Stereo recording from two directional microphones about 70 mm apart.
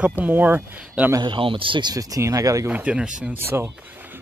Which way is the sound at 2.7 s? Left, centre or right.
Centre.